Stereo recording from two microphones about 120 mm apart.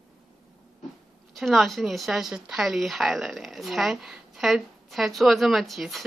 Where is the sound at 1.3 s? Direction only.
Centre (ahead or behind).